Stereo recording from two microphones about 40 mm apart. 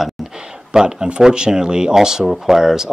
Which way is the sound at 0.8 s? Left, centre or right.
Centre.